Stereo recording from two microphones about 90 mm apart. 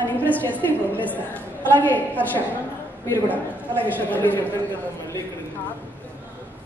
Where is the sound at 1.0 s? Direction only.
20° left (ahead or behind).